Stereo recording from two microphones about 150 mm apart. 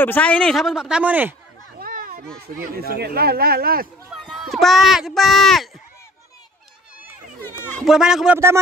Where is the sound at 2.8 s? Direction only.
90° right.